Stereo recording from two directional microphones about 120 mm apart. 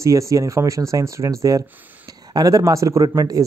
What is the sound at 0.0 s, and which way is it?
Speech, 25° right (ahead or behind).